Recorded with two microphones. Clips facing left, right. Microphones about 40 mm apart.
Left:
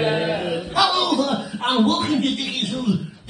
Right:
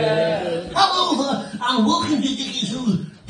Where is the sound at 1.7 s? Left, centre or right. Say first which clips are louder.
Even; centre.